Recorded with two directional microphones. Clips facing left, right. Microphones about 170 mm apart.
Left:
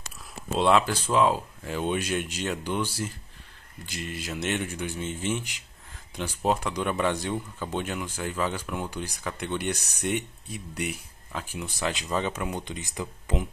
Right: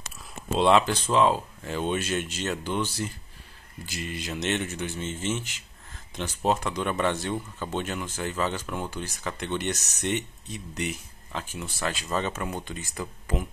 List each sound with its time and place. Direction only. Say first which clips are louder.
0.6 s speech: right 1 dB; 5° left (ahead or behind)
3.8 s speech: right 1 dB; centre (ahead or behind); by 13.0 s 15° left (ahead or behind)